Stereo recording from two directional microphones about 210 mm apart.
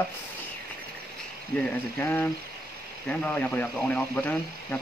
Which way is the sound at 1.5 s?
5° left (ahead or behind).